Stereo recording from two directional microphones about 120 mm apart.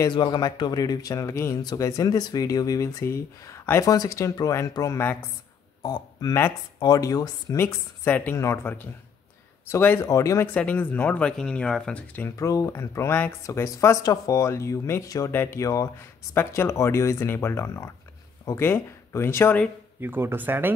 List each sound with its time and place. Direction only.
0.1 s speech: 40° left (ahead or behind)
10.5 s speech: 10° left (ahead or behind)
15.3 s speech: 15° left (ahead or behind)
15.6 s speech: 25° left (ahead or behind)
20.0 s speech: 20° right (ahead or behind)